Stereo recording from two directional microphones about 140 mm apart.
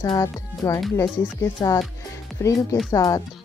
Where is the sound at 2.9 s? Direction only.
25° left (ahead or behind).